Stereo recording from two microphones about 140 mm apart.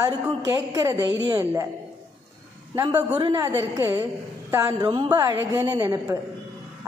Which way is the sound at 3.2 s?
30° right (ahead or behind).